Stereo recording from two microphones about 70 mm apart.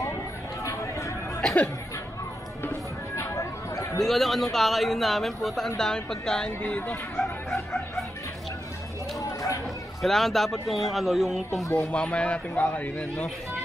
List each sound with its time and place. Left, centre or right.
0.7 s a sound: left
1.4 s speech: left
3.3 s a sound: left
4.0 s speech: centre
7.2 s music: centre
9.2 s a sound: left
10.0 s speech: centre
11.6 s speech: left
11.9 s speech: centre